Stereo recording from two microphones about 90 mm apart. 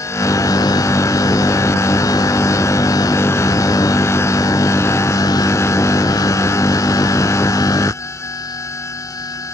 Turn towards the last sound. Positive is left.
turn(degrees=35)  # may be behind; listen again after turning